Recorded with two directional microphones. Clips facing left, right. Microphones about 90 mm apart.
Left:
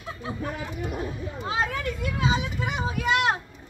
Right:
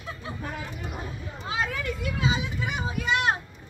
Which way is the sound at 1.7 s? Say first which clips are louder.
Left 1 dB; 50° left (ahead or behind).